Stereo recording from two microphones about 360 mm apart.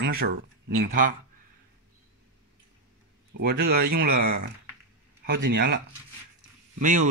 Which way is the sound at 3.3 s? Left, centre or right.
Right.